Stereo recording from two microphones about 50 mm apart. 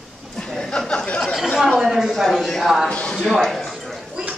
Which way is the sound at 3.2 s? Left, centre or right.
Centre.